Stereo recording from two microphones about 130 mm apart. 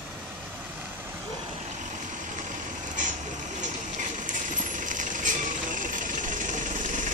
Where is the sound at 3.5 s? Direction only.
80° right.